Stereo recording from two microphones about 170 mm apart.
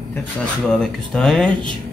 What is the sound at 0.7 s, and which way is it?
Speech, 5° left (ahead or behind).